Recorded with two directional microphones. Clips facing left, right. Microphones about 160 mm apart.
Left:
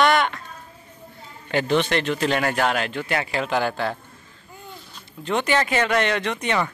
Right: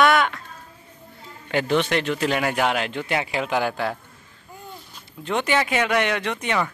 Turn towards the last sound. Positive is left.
turn(degrees=-5)  # may be behind; listen again after turning